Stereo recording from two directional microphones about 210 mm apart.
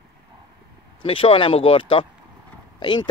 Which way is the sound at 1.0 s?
25° left (ahead or behind).